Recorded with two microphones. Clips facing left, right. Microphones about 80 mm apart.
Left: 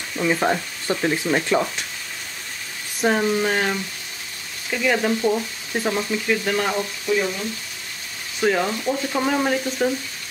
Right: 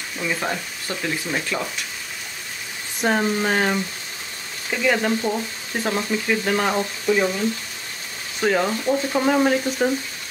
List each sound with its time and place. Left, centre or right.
0.2 s speech: centre
3.0 s speech: centre
4.8 s frying: centre
6.7 s frying: right
8.4 s frying: centre